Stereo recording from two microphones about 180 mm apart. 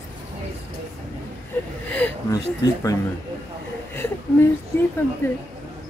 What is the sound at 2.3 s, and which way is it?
Speech, 20° left (ahead or behind).